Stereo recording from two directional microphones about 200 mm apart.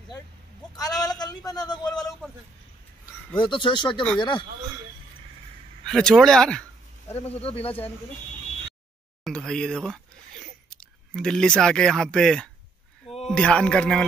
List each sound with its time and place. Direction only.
0.7 s a sound: 20° left (ahead or behind)
3.3 s speech: 25° left (ahead or behind)
5.9 s speech: centre (ahead or behind)
7.4 s speech: 30° left (ahead or behind)
9.2 s a man's voice: 5° left (ahead or behind)